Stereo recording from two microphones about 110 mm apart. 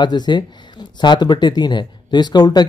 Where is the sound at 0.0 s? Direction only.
40° left (ahead or behind).